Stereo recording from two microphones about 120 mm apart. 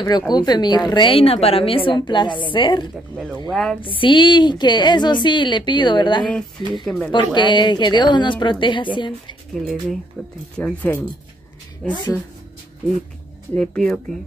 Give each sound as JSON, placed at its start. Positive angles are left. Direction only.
{"t": 0.3, "sound": "a woman's voice", "side_deg": 35}
{"t": 3.4, "sound": "speech", "side_deg": 0}
{"t": 3.8, "sound": "a woman's voice", "side_deg": 45}
{"t": 6.7, "sound": "speech", "side_deg": 5}
{"t": 7.1, "sound": "a woman's voice", "side_deg": 40}
{"t": 9.5, "sound": "speech", "side_deg": 0}
{"t": 13.6, "sound": "speech", "side_deg": 5}